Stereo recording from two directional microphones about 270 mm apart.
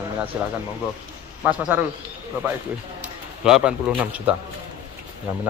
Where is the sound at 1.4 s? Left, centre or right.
Centre.